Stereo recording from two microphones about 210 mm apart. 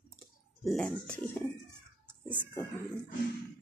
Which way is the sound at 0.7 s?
Centre (ahead or behind).